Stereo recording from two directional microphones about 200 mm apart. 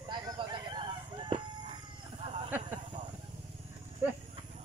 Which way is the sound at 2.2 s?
25° right (ahead or behind).